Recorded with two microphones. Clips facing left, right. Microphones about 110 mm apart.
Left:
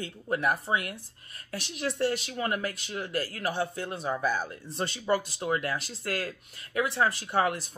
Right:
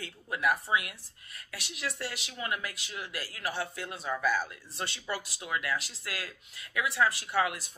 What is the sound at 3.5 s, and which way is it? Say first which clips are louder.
Speech: left 5 dB; 30° left (ahead or behind).